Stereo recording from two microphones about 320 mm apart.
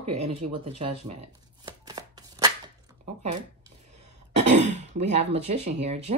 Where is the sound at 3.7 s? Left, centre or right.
Centre.